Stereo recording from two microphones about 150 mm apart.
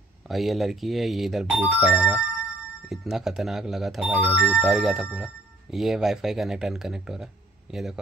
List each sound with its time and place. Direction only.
0.3 s speech: centre (ahead or behind)